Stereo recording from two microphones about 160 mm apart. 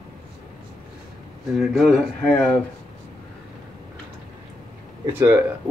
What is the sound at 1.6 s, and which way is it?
Speech, centre (ahead or behind).